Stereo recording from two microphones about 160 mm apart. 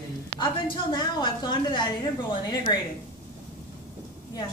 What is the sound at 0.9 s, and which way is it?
A woman's voice, 25° left (ahead or behind).